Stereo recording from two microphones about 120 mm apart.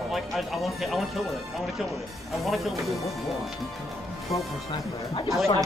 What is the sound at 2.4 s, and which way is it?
Speech, centre (ahead or behind).